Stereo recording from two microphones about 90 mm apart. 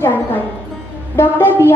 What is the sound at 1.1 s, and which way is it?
Speech, 25° left (ahead or behind).